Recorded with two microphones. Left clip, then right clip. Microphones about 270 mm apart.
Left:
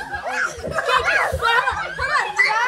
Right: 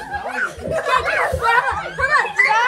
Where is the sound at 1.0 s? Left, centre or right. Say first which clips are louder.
Even; left.